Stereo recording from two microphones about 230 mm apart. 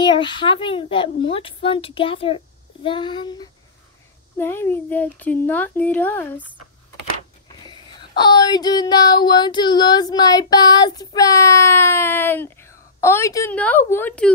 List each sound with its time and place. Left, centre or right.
0.0 s speech: left
4.4 s child singing: centre
8.2 s child singing: centre